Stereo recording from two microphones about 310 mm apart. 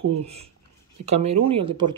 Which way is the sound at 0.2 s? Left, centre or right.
Centre.